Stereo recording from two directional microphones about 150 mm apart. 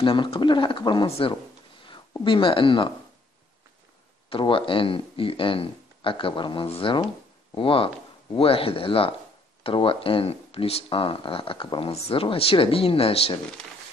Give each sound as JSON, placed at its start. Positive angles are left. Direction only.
{"t": 0.0, "sound": "speech", "side_deg": 35}
{"t": 4.3, "sound": "speech", "side_deg": 35}